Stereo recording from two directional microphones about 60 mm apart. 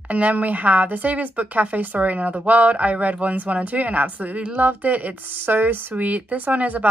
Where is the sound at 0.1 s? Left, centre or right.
Right.